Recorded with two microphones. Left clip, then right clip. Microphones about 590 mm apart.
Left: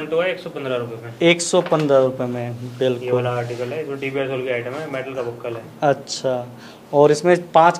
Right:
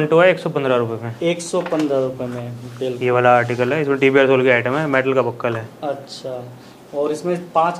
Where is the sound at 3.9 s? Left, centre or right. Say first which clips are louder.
Right 13 dB; right.